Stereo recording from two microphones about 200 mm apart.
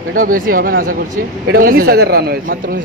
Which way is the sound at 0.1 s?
45° right (ahead or behind).